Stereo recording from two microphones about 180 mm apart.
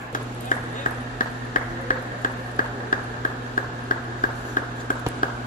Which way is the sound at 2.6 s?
50° left (ahead or behind).